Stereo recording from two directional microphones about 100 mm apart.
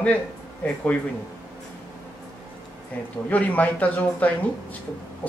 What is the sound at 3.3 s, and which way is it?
Speech, 15° left (ahead or behind).